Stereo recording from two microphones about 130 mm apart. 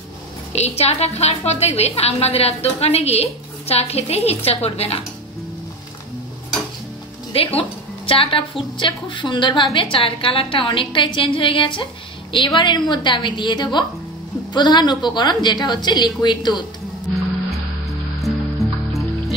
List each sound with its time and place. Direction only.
0.5 s a woman's voice: 55° left (ahead or behind)
7.3 s a woman's voice: 45° left (ahead or behind)
18.2 s music: centre (ahead or behind)